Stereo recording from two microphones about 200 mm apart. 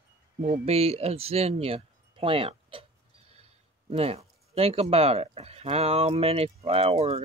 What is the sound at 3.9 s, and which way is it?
Speech, 30° right (ahead or behind).